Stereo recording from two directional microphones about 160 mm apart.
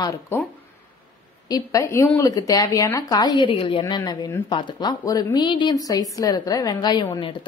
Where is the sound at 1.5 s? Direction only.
20° left (ahead or behind).